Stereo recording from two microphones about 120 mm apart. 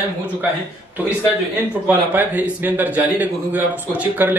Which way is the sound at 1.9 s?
15° right (ahead or behind).